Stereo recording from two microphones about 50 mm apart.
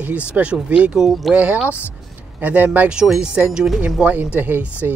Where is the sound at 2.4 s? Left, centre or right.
Right.